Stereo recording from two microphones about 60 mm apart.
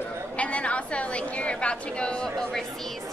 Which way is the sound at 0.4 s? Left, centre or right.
Left.